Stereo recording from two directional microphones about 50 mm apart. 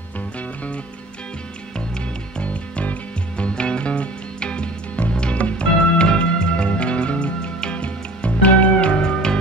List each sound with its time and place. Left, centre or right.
2.3 s music: left
9.0 s music: centre